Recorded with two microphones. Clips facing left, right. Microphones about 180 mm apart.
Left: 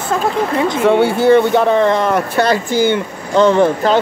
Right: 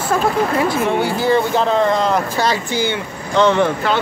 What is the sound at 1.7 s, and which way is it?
Speech, 65° left (ahead or behind).